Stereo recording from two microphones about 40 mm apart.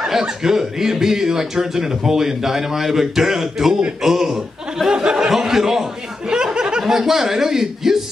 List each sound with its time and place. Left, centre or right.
0.2 s a man's voice: centre
6.2 s a sound: centre
6.9 s speech: centre